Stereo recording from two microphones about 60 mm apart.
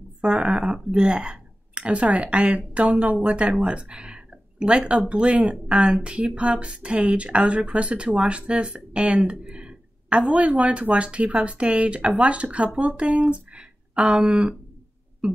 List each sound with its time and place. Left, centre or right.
0.2 s speech: centre